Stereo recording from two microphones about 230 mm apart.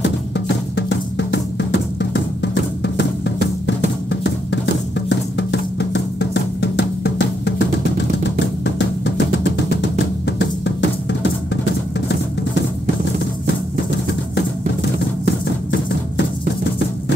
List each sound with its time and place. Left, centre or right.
0.7 s drum: left
8.6 s music: left